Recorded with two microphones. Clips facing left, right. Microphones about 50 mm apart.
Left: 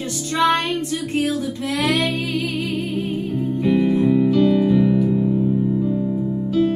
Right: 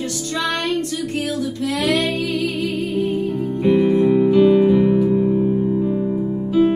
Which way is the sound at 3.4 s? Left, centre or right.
Centre.